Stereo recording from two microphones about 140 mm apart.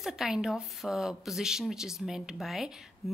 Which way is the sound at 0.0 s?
5° right (ahead or behind).